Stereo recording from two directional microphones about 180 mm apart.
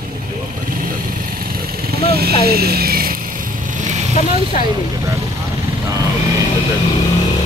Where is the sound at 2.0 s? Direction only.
60° right (ahead or behind).